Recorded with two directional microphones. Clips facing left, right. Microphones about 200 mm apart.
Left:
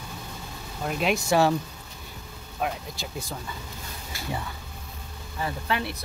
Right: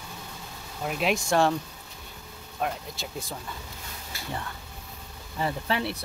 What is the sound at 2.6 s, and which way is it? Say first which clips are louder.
Speech: left 1 dB; centre (ahead or behind).